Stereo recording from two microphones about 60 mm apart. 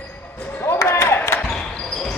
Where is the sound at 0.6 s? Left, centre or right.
Left.